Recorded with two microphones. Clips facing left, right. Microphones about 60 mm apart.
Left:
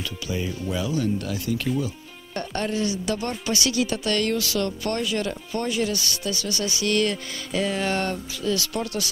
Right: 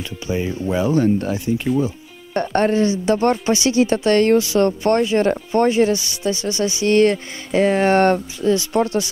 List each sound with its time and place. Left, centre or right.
0.0 s speech: right
2.3 s speech: right
8.4 s speech: right